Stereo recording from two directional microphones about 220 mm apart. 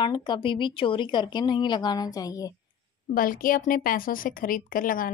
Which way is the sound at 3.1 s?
40° left (ahead or behind).